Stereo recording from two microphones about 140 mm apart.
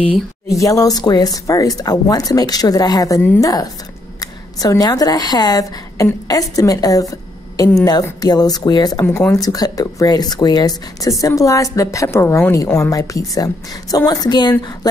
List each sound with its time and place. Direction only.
0.5 s a woman's voice: 25° left (ahead or behind)